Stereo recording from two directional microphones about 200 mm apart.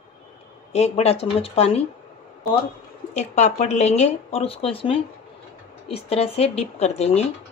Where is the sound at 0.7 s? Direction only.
30° left (ahead or behind).